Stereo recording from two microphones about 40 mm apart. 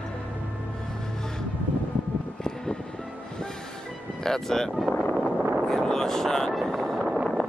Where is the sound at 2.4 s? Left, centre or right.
Centre.